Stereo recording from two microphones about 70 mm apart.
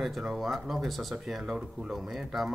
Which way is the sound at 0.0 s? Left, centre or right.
Centre.